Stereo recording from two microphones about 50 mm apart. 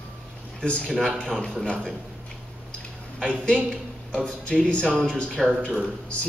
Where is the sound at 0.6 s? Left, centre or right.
Left.